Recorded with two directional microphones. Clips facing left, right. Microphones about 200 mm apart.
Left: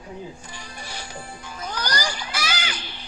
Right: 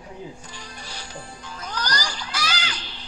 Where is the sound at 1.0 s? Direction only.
10° left (ahead or behind).